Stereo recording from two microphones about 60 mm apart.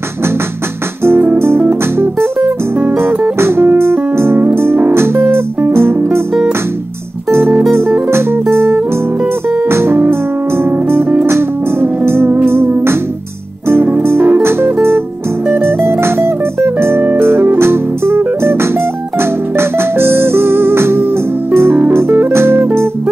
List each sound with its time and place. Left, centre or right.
1.0 s guitar: right
3.0 s music: right
7.2 s music: right
14.0 s music: right